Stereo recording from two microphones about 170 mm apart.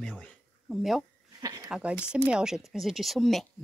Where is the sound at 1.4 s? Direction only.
20° right (ahead or behind).